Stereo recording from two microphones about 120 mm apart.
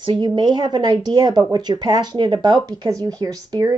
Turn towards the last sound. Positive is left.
turn(degrees=-30)  # may be behind; listen again after turning